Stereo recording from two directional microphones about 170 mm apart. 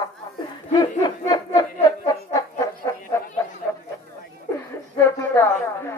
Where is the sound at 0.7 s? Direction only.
25° left (ahead or behind).